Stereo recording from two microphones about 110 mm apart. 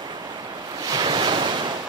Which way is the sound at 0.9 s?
45° right (ahead or behind).